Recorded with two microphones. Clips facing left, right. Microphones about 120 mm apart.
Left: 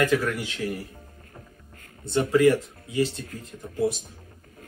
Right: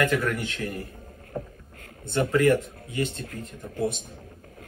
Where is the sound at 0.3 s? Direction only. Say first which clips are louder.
Even; centre (ahead or behind).